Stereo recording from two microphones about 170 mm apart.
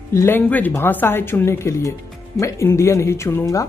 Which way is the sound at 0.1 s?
15° left (ahead or behind).